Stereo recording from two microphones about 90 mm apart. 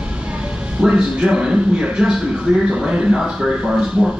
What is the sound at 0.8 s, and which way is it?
A man's voice, 10° right (ahead or behind).